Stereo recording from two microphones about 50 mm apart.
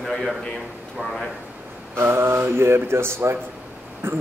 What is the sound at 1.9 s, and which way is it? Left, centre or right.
Speech, right.